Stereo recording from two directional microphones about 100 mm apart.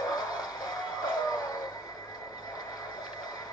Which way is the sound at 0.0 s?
40° left (ahead or behind).